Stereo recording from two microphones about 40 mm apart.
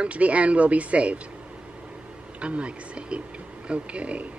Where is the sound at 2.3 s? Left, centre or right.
Right.